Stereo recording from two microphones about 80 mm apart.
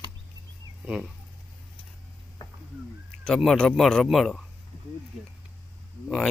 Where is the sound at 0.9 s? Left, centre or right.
Centre.